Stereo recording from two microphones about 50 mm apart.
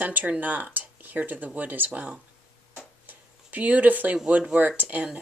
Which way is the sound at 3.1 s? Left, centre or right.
Right.